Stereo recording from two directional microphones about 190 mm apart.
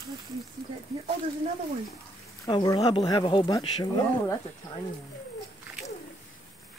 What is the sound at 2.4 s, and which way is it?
Speech, 20° left (ahead or behind).